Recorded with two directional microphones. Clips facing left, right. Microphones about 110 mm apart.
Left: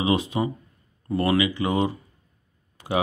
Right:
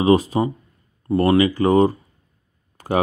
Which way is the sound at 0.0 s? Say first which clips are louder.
Right 7 dB; 40° right (ahead or behind).